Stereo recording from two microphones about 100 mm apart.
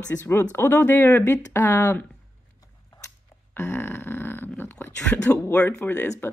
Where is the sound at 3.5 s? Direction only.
25° left (ahead or behind).